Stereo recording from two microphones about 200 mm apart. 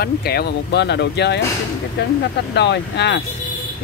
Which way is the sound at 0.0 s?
50° left (ahead or behind).